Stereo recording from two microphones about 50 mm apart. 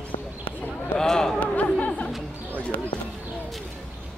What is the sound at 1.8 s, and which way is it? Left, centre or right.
Music, left.